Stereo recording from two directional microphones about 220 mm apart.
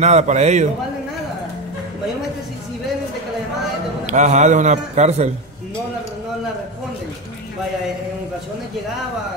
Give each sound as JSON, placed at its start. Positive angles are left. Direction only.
{"t": 0.0, "sound": "a man's voice", "side_deg": -30}
{"t": 4.0, "sound": "a man's voice", "side_deg": -35}